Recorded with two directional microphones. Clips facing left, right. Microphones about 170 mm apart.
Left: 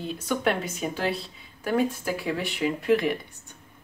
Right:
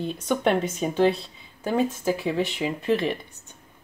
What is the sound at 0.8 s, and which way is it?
Speech, 30° right (ahead or behind).